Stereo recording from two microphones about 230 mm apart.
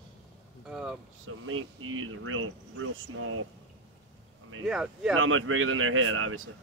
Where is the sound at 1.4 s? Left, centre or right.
Right.